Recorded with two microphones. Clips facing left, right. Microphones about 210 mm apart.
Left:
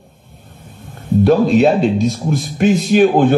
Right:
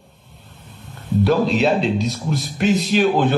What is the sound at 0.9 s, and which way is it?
Speech, 50° left (ahead or behind).